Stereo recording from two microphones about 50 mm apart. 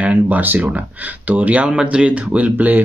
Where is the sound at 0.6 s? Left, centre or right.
Right.